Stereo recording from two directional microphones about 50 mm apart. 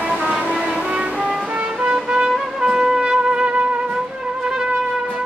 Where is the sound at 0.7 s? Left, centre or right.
Right.